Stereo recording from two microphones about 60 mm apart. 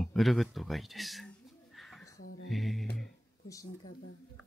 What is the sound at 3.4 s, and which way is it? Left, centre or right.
Speech, left.